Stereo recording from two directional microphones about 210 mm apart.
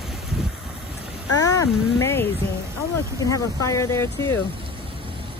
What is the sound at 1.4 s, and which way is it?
Speech, 15° left (ahead or behind).